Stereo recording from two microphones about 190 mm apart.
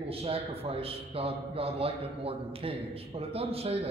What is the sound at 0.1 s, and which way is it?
A man's voice, 30° right (ahead or behind).